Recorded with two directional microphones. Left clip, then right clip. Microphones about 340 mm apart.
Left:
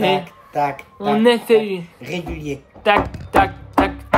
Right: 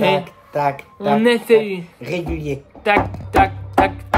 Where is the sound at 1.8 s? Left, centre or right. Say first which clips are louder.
Right 3 dB; centre.